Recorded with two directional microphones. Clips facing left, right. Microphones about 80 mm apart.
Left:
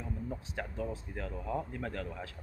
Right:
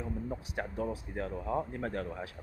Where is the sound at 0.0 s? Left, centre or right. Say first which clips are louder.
Right 3 dB; right.